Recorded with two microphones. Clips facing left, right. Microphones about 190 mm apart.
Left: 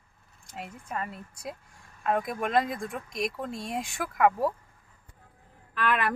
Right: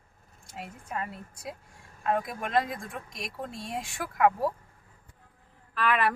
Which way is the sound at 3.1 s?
55° left (ahead or behind).